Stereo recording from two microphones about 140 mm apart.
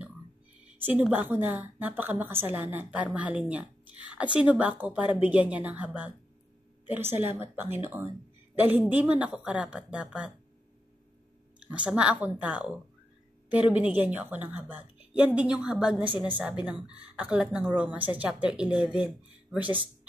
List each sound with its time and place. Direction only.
0.7 s a sound: 15° right (ahead or behind)
1.1 s a woman's voice: 15° right (ahead or behind)
11.6 s a woman's voice: 10° right (ahead or behind)